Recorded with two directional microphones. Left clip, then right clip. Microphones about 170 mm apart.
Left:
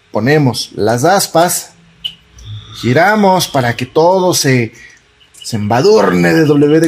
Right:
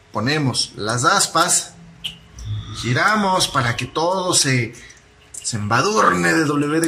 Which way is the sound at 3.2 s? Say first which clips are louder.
Left 7 dB; 35° left (ahead or behind).